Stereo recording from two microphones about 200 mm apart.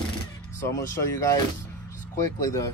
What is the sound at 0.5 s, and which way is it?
Speech, 15° left (ahead or behind).